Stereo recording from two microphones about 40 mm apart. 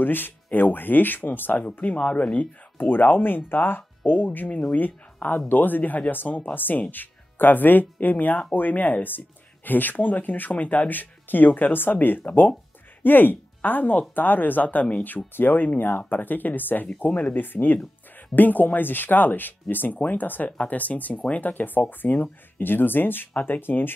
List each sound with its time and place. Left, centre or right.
0.0 s speech: left
1.6 s speech: left
2.3 s speech: left
15.3 s speech: left
17.4 s speech: left